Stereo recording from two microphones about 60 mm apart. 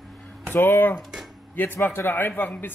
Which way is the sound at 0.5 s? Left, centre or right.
Left.